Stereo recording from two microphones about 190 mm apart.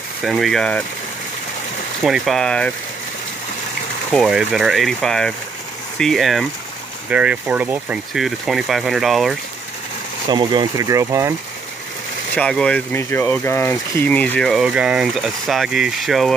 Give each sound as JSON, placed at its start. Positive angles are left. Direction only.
{"t": 0.2, "sound": "speech", "side_deg": 0}
{"t": 2.0, "sound": "speech", "side_deg": 0}
{"t": 4.1, "sound": "speech", "side_deg": 0}
{"t": 10.3, "sound": "speech", "side_deg": -25}
{"t": 12.4, "sound": "speech", "side_deg": 5}